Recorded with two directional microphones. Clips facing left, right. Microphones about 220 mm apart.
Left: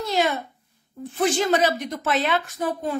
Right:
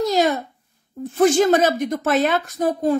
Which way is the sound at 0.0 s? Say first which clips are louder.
Right 5 dB; 40° right (ahead or behind).